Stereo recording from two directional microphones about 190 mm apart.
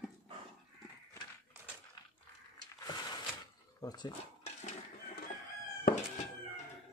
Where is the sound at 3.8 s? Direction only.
20° left (ahead or behind).